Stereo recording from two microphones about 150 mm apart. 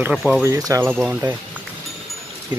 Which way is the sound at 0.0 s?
5° right (ahead or behind).